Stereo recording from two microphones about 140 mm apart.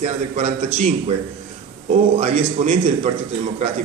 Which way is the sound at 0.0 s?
50° right (ahead or behind).